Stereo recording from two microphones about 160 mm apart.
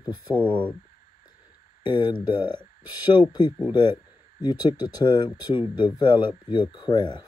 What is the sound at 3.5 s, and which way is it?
Speech, 15° right (ahead or behind).